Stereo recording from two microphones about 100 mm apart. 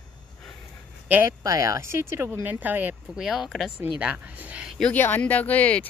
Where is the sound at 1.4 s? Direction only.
35° right (ahead or behind).